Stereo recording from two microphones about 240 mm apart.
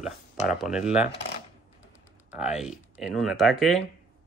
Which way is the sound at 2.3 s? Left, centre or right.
Centre.